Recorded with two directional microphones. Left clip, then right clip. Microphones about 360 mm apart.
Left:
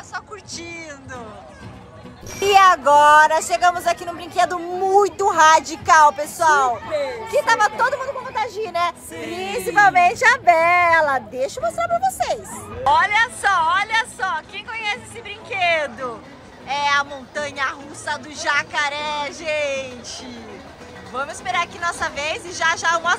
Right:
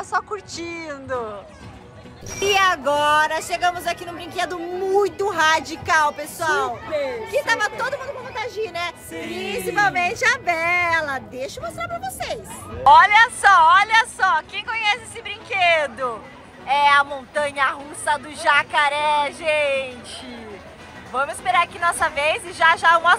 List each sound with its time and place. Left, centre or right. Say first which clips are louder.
0.1 s speech: right 6 dB; centre
2.4 s a woman's voice: left 5 dB; centre